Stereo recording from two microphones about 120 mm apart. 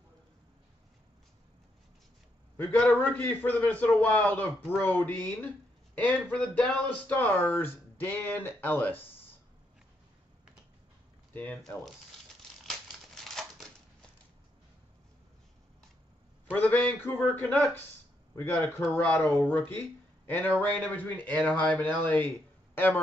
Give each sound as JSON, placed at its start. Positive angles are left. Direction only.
{"t": 2.5, "sound": "speech", "side_deg": 15}
{"t": 12.6, "sound": "typewriter", "side_deg": 0}
{"t": 16.5, "sound": "speech", "side_deg": 15}